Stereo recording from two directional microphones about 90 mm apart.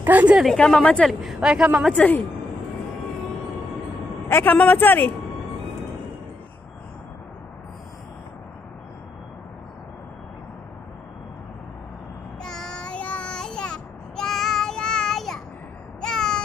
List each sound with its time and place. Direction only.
0.0 s a woman's voice: 15° right (ahead or behind)
0.6 s a woman's voice: 10° left (ahead or behind)
1.2 s a woman's voice: 5° right (ahead or behind)
2.0 s a woman's voice: 20° left (ahead or behind)
4.3 s a man's voice: 25° left (ahead or behind)
12.4 s child singing: 5° left (ahead or behind)
16.0 s a sound: 5° left (ahead or behind)